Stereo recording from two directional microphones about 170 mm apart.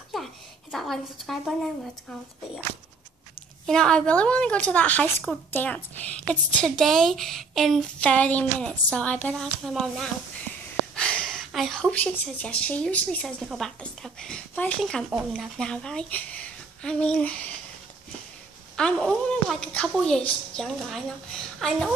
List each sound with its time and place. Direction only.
0.1 s a woman's voice: centre (ahead or behind)
3.6 s a woman's voice: 5° left (ahead or behind)
18.8 s a woman's voice: 5° left (ahead or behind)